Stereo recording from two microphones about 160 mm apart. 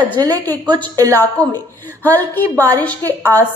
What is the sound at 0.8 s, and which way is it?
Speech, 20° right (ahead or behind).